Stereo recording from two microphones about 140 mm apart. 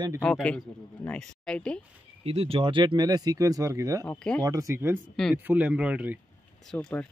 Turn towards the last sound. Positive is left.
turn(degrees=5)  # may be behind; listen again after turning